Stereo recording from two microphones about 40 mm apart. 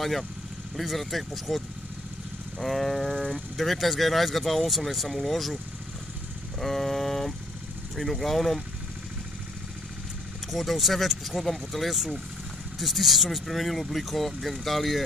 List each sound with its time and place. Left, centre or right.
0.7 s speech: centre
2.6 s speech: centre
3.1 s speech: left
3.5 s speech: centre
6.6 s vehicle: centre
7.9 s speech: centre
10.5 s speech: centre